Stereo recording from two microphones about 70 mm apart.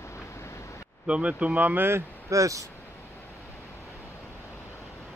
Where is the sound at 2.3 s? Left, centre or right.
Right.